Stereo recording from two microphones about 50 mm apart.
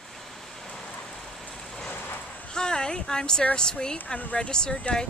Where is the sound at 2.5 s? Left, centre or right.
Centre.